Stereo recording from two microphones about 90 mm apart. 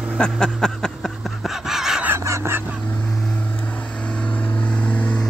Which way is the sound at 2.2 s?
35° right (ahead or behind).